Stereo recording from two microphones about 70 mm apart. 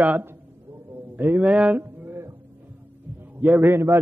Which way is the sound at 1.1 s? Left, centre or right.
Right.